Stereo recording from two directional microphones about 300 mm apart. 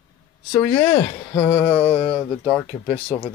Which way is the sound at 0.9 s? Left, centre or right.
Left.